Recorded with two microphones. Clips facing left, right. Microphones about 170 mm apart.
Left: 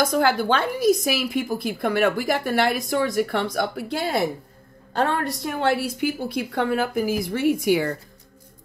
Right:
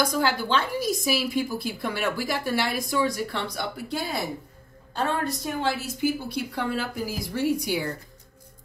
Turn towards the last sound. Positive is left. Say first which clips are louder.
# left 6 dB
turn(degrees=65)  # may be behind; listen again after turning